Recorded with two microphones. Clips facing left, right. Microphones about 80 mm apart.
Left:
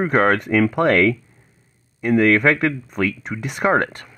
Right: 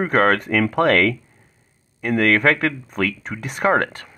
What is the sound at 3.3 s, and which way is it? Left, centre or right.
Speech, centre.